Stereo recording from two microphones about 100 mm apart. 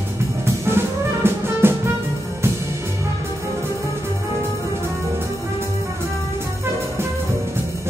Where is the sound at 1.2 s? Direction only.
25° right (ahead or behind).